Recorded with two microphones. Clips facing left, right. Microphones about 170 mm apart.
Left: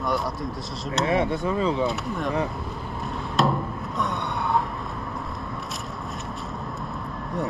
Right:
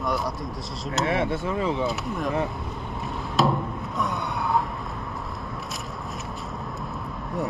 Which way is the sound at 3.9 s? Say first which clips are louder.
Even; centre (ahead or behind).